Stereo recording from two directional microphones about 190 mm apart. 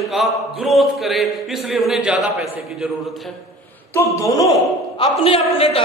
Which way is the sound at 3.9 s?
15° left (ahead or behind).